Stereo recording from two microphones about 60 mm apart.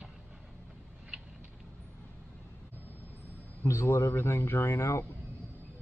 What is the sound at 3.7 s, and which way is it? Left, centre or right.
Speech, left.